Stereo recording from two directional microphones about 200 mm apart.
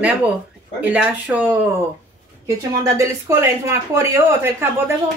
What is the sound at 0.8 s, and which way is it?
Speech, 5° right (ahead or behind).